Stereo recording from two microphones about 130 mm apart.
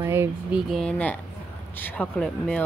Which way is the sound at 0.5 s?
Centre (ahead or behind).